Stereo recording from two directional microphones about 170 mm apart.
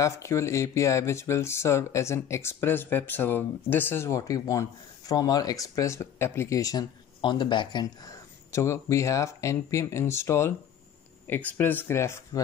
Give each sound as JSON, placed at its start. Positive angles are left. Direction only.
{"t": 0.0, "sound": "speech", "side_deg": 15}